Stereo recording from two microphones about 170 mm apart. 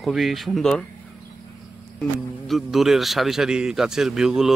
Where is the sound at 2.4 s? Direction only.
Centre (ahead or behind).